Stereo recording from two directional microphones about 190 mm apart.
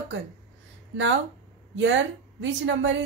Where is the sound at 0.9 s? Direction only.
75° right (ahead or behind).